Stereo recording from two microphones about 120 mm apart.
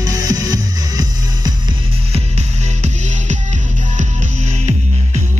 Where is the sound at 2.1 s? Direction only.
65° right (ahead or behind).